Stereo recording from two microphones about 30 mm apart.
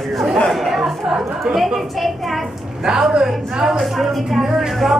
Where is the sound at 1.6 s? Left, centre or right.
Centre.